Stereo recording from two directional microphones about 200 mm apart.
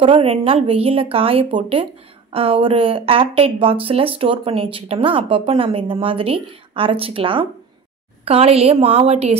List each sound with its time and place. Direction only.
0.0 s speech: 30° right (ahead or behind)